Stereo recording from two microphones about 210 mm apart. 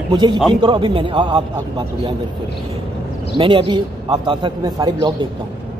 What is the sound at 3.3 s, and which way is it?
Speech, 25° right (ahead or behind).